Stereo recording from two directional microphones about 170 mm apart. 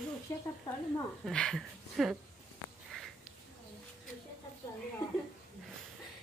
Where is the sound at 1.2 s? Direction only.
5° left (ahead or behind).